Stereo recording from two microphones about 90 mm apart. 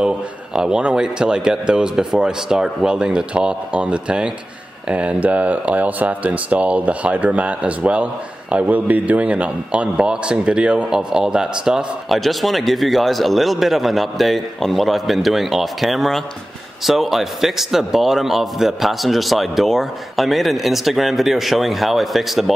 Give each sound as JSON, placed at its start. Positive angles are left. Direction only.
{"t": 0.0, "sound": "a man's voice", "side_deg": -10}